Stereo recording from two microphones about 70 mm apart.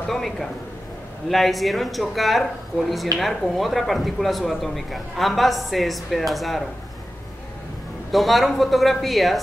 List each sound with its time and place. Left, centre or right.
0.1 s speech: centre
8.1 s speech: centre